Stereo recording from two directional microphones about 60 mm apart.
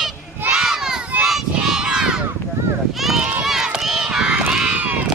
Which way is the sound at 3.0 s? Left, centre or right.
Centre.